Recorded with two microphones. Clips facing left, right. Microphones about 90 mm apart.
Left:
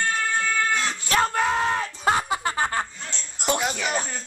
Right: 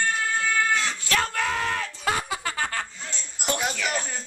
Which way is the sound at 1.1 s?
25° left (ahead or behind).